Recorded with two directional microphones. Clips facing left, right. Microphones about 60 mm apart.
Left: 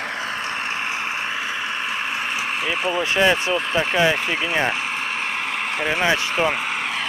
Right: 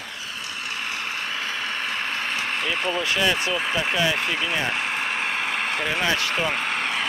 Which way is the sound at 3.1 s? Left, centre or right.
Left.